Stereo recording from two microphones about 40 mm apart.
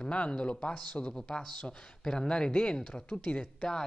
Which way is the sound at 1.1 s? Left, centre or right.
Centre.